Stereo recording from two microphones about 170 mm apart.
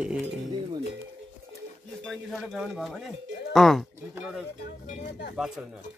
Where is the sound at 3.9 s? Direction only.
10° right (ahead or behind).